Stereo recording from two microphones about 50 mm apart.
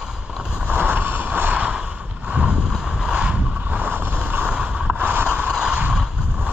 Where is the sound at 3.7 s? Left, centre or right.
Right.